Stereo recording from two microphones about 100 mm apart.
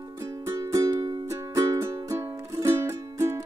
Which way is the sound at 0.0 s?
30° right (ahead or behind).